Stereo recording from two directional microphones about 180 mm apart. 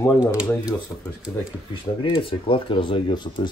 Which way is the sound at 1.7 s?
30° left (ahead or behind).